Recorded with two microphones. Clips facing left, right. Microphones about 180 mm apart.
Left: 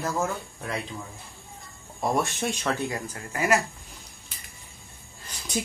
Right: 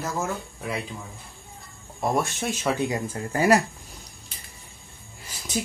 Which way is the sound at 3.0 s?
30° right (ahead or behind).